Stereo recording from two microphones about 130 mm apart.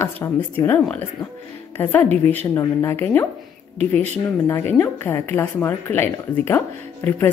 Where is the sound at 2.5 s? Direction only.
20° left (ahead or behind).